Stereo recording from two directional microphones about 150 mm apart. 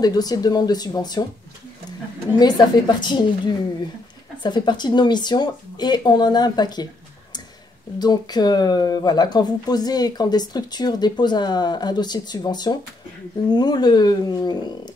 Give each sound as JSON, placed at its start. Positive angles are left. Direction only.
{"t": 0.0, "sound": "speech", "side_deg": 25}
{"t": 2.3, "sound": "speech", "side_deg": 30}
{"t": 8.0, "sound": "speech", "side_deg": 25}